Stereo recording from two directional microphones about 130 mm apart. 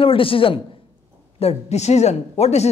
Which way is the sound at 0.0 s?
45° left (ahead or behind).